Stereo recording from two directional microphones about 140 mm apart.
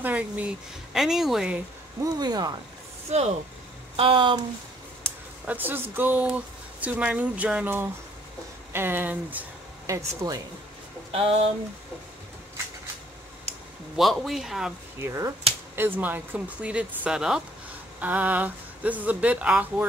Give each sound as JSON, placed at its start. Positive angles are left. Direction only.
{"t": 0.0, "sound": "a man's voice", "side_deg": -10}
{"t": 2.1, "sound": "speech", "side_deg": -30}
{"t": 3.1, "sound": "speech", "side_deg": -50}
{"t": 3.9, "sound": "speech", "side_deg": -40}
{"t": 5.5, "sound": "speech", "side_deg": -15}
{"t": 9.8, "sound": "speech", "side_deg": -25}
{"t": 11.1, "sound": "speech", "side_deg": -45}
{"t": 13.5, "sound": "a sound", "side_deg": -50}
{"t": 13.9, "sound": "a man's voice", "side_deg": 0}
{"t": 15.0, "sound": "speech", "side_deg": -20}